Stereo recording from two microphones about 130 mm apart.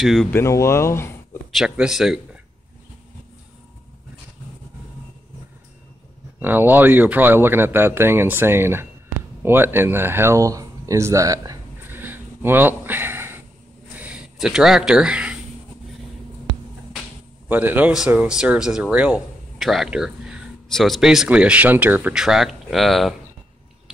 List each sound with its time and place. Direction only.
0.0 s speech: centre (ahead or behind)
0.3 s speech: 20° left (ahead or behind)
1.5 s speech: 5° right (ahead or behind)
6.4 s speech: 15° right (ahead or behind)
11.9 s a sound: 15° right (ahead or behind)
13.9 s speech: 10° right (ahead or behind)
17.5 s speech: 15° right (ahead or behind)